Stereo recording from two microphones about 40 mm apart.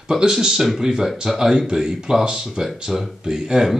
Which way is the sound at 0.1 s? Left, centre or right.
Centre.